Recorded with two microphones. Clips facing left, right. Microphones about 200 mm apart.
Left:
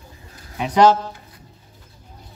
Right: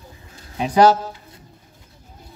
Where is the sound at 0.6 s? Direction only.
35° right (ahead or behind).